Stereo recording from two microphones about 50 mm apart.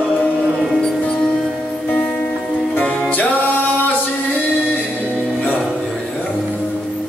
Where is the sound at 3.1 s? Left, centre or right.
Left.